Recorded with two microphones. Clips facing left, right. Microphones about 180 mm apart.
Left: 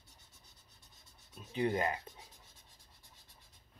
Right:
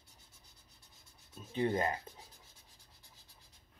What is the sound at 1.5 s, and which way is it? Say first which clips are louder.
Speech: even; 30° right (ahead or behind).